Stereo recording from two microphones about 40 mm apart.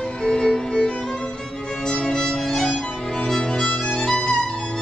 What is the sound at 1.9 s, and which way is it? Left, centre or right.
Violin, centre.